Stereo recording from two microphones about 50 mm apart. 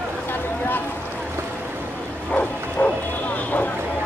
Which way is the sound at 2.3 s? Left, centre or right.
Left.